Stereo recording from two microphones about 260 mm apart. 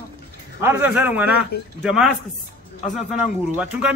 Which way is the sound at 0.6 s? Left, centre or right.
Centre.